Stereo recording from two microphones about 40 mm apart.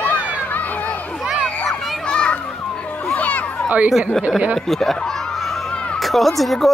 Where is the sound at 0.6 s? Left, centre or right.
Left.